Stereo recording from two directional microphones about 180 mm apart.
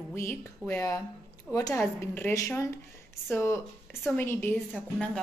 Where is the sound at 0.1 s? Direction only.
15° left (ahead or behind).